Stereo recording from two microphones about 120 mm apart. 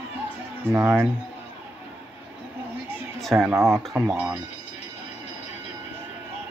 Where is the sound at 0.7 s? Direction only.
10° right (ahead or behind).